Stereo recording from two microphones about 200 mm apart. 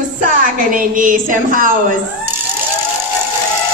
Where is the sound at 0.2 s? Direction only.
40° right (ahead or behind).